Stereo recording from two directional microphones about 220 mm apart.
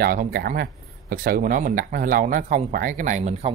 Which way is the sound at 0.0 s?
40° right (ahead or behind).